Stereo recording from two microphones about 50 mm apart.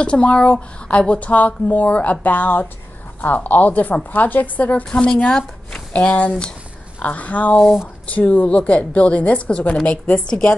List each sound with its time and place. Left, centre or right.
0.0 s a woman's voice: left
4.9 s speech: centre